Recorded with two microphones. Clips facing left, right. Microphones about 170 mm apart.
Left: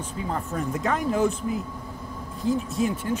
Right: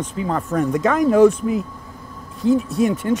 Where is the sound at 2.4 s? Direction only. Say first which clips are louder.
Right 7 dB; 70° right (ahead or behind).